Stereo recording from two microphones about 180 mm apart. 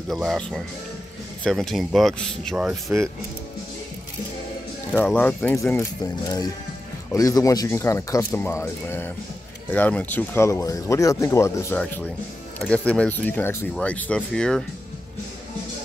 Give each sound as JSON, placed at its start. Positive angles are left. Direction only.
{"t": 0.1, "sound": "speech", "side_deg": 0}
{"t": 4.9, "sound": "speech", "side_deg": 5}